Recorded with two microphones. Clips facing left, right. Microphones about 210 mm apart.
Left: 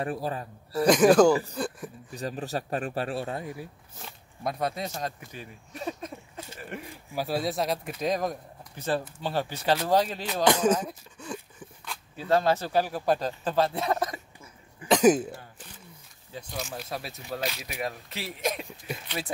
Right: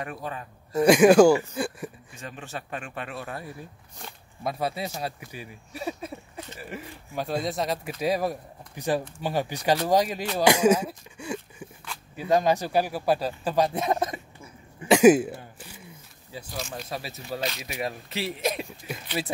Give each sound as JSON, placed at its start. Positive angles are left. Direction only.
{"t": 0.0, "sound": "speech", "side_deg": 35}
{"t": 0.7, "sound": "speech", "side_deg": -10}
{"t": 2.1, "sound": "speech", "side_deg": 35}
{"t": 3.5, "sound": "speech", "side_deg": 0}
{"t": 10.3, "sound": "a sound", "side_deg": -10}
{"t": 12.2, "sound": "speech", "side_deg": -15}
{"t": 14.9, "sound": "throat clearing", "side_deg": -10}
{"t": 16.3, "sound": "speech", "side_deg": 0}